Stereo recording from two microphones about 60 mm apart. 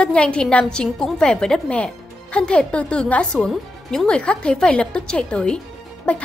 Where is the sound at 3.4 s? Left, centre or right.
Centre.